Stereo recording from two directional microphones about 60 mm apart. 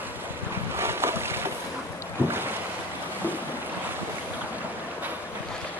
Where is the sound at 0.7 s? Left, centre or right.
Right.